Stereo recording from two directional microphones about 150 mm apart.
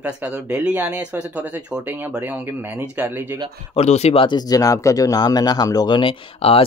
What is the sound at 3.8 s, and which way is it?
Speech, 45° left (ahead or behind).